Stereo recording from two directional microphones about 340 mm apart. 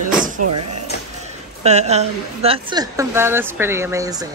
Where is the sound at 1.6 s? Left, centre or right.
Centre.